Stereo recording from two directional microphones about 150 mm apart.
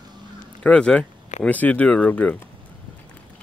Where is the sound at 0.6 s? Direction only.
5° left (ahead or behind).